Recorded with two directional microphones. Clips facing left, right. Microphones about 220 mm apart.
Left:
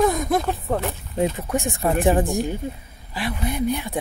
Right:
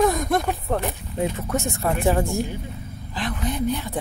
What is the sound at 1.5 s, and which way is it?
A woman's voice, 15° left (ahead or behind).